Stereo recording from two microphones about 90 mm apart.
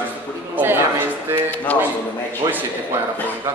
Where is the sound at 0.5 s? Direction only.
25° right (ahead or behind).